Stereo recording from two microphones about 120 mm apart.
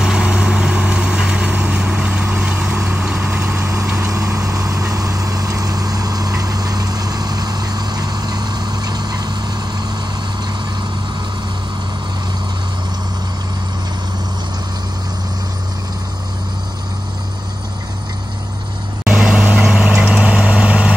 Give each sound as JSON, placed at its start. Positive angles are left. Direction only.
{"t": 0.0, "sound": "vehicle", "side_deg": -5}
{"t": 19.0, "sound": "vehicle", "side_deg": -10}